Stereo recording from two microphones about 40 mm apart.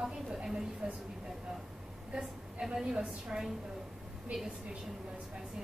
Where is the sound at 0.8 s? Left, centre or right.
Right.